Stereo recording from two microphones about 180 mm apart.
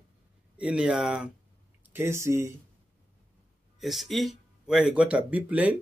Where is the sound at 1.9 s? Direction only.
15° right (ahead or behind).